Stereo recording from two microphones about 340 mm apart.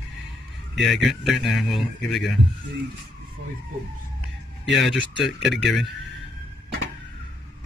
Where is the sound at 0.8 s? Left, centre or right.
Centre.